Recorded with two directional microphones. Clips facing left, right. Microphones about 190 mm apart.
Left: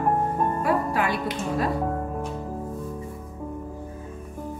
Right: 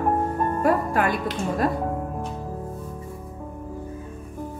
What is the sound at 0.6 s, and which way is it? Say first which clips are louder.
Music: right 6 dB; 50° right (ahead or behind).